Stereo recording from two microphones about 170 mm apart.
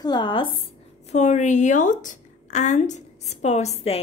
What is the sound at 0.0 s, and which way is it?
Speech, 25° left (ahead or behind).